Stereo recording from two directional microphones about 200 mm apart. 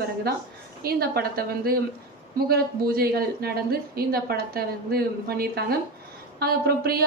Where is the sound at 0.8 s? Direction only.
50° right (ahead or behind).